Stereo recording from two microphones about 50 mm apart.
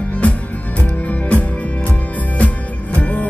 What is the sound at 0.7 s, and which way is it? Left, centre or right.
Music, left.